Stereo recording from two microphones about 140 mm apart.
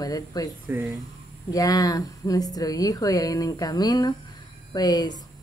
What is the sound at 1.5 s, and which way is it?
Speech, 25° left (ahead or behind).